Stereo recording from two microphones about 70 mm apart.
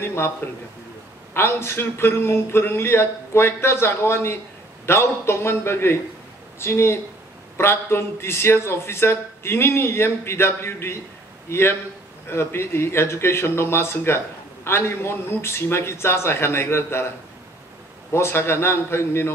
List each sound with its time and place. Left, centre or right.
0.0 s a man's voice: left
1.3 s a man's voice: left
18.1 s speech: left